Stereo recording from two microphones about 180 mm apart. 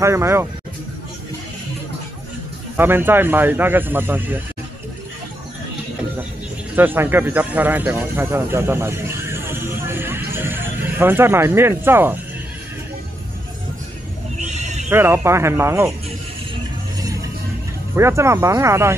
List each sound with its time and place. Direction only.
0.0 s speech: 15° right (ahead or behind)
2.8 s speech: 10° right (ahead or behind)
6.7 s speech: 10° right (ahead or behind)
14.4 s horse: 40° right (ahead or behind)
14.9 s speech: 15° right (ahead or behind)
17.0 s music: 20° right (ahead or behind)
17.9 s speech: 15° right (ahead or behind)